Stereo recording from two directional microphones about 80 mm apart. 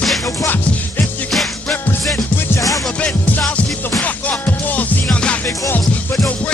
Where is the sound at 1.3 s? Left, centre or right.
Centre.